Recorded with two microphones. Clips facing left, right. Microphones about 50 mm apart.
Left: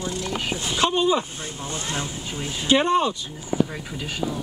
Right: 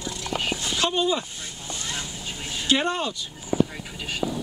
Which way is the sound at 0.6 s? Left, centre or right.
Centre.